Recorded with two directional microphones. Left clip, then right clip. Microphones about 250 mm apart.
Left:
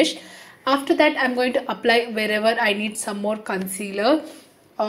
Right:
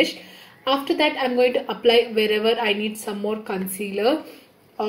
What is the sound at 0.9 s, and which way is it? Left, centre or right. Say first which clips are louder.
Speech: left 3 dB; centre.